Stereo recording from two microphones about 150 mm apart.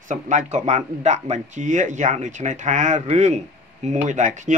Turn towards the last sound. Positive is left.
turn(degrees=-55)  # may be behind; listen again after turning